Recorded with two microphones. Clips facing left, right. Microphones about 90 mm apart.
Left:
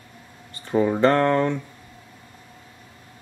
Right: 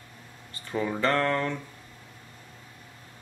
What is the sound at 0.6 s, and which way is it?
Speech, 30° left (ahead or behind).